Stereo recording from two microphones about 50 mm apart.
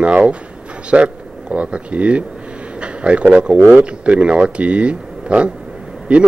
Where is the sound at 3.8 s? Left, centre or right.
Right.